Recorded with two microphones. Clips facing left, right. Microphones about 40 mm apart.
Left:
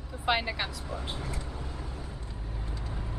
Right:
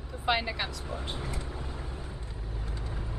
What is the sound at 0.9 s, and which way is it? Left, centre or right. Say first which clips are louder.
Speech: even; centre.